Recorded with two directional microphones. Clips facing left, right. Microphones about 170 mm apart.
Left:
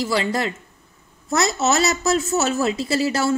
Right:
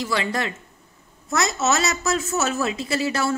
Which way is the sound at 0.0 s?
30° left (ahead or behind).